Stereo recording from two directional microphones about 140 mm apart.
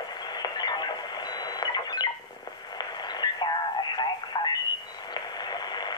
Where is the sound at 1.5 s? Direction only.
30° left (ahead or behind).